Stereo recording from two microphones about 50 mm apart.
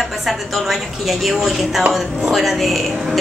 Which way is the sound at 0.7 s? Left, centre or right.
Centre.